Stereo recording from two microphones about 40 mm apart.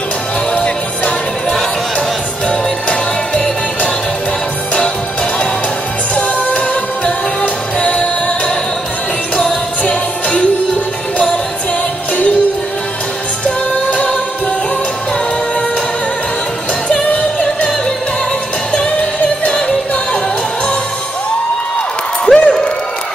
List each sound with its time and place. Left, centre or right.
2.0 s music: left
6.1 s music: left
9.8 s music: left
17.1 s music: left
18.9 s music: left
22.2 s crowd: left